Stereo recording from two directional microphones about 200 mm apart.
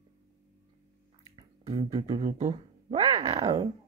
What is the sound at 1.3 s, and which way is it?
Speech, 25° right (ahead or behind).